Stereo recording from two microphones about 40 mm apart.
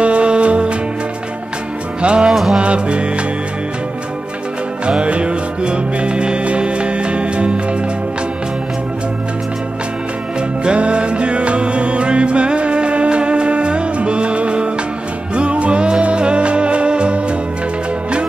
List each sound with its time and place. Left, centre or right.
0.0 s music: right
2.0 s music: right
2.3 s music: centre
2.6 s music: right
4.8 s music: right
10.6 s music: right